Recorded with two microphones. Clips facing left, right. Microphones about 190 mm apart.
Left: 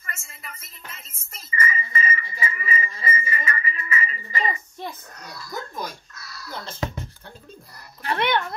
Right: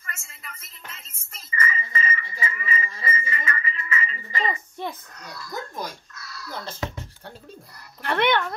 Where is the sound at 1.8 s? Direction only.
30° right (ahead or behind).